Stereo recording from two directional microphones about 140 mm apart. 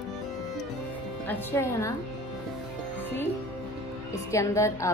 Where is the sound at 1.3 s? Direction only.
15° left (ahead or behind).